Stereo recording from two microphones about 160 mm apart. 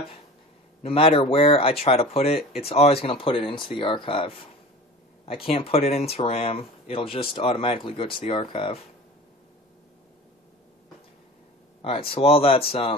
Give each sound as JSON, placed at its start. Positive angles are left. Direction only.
{"t": 0.8, "sound": "speech", "side_deg": 35}
{"t": 11.8, "sound": "speech", "side_deg": 35}